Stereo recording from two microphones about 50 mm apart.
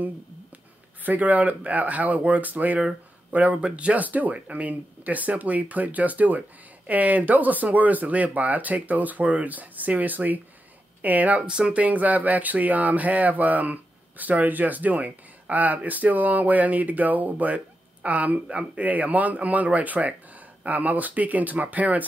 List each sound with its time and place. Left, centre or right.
1.0 s speech: right
11.4 s speech: centre
11.8 s speech: right